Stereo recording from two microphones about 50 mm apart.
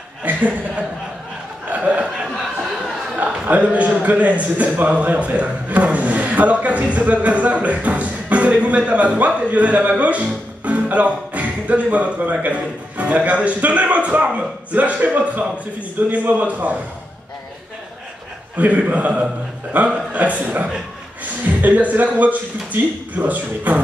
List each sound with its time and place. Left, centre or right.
0.2 s speech: right
1.7 s chuckle: right
3.2 s a man's voice: right
18.6 s a man's voice: right